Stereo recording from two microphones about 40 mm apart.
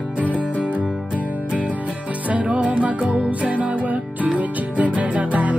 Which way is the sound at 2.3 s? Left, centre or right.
Right.